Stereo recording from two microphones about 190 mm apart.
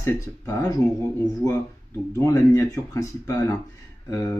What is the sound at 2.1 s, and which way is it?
Speech, 15° left (ahead or behind).